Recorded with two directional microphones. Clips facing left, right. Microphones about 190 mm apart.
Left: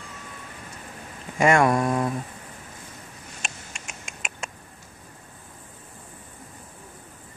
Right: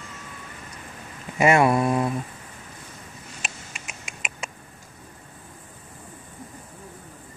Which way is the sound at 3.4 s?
Centre (ahead or behind).